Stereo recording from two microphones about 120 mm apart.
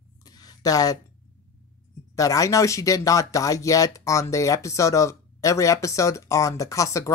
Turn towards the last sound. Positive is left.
turn(degrees=25)  # may be behind; listen again after turning